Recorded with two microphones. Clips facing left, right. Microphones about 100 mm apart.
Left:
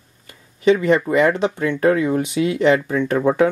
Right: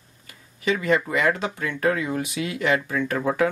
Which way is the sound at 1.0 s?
25° left (ahead or behind).